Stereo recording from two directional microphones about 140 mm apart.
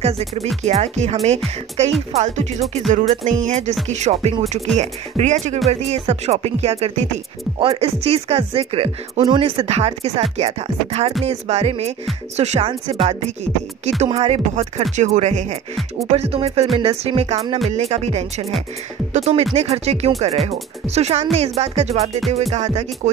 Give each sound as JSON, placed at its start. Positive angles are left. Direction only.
{"t": 0.0, "sound": "speech", "side_deg": -45}
{"t": 2.0, "sound": "music", "side_deg": -50}
{"t": 3.9, "sound": "speech", "side_deg": -50}
{"t": 4.7, "sound": "music", "side_deg": -55}
{"t": 5.7, "sound": "speech", "side_deg": -45}